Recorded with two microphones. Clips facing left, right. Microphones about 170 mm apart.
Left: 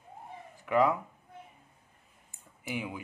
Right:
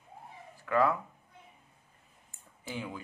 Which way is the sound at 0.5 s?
15° left (ahead or behind).